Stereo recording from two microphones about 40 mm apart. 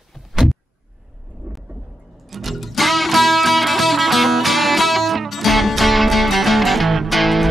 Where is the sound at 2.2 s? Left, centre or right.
Centre.